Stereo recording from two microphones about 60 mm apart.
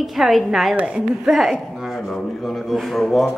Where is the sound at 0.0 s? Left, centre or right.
Centre.